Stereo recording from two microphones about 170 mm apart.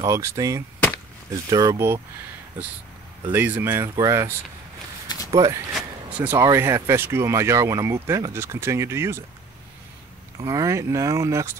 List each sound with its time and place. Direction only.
0.0 s speech: 20° right (ahead or behind)
3.3 s speech: 10° right (ahead or behind)
5.0 s a sound: 20° left (ahead or behind)
5.3 s speech: 20° right (ahead or behind)
5.8 s speech: 10° right (ahead or behind)
10.4 s speech: 20° right (ahead or behind)